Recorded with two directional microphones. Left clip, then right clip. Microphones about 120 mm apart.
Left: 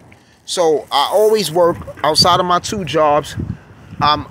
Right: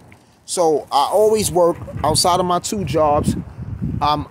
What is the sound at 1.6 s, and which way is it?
Speech, 5° right (ahead or behind).